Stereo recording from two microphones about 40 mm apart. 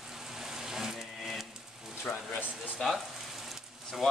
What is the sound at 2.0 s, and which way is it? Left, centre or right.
Speech, left.